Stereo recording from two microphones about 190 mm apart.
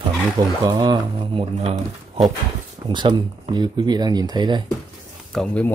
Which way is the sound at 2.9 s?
25° right (ahead or behind).